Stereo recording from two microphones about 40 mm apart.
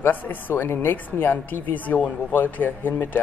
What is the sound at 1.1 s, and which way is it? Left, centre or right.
Speech, left.